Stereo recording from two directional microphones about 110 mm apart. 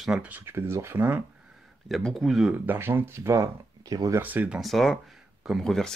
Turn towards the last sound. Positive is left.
turn(degrees=5)  # may be behind; listen again after turning